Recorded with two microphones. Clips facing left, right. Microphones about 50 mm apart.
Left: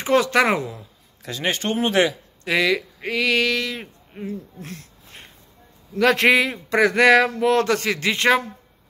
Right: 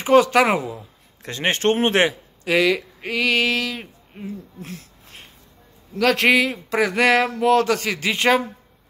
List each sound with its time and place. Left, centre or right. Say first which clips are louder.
0.0 s speech: right 3 dB; centre
1.2 s speech: right 2 dB; right
1.6 s speech: right 2 dB; right
2.4 s a man's voice: right 2 dB; centre